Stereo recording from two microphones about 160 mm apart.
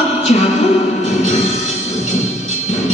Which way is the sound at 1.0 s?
45° left (ahead or behind).